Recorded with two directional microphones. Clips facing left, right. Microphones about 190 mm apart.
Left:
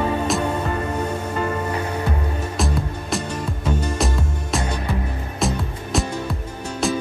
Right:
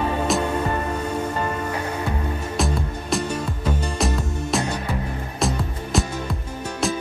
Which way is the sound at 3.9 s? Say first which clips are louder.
Even; centre (ahead or behind).